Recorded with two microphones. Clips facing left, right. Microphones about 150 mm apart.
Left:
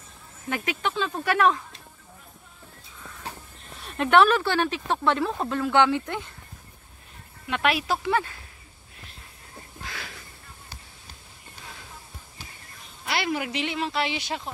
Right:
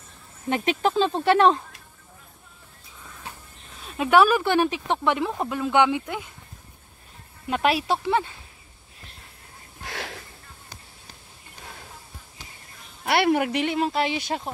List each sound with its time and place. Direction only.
0.5 s speech: 30° right (ahead or behind)
3.8 s speech: 5° right (ahead or behind)
7.4 s speech: 35° right (ahead or behind)
9.8 s a sound: 75° right (ahead or behind)
13.0 s speech: 60° right (ahead or behind); by 14.5 s 45° right (ahead or behind)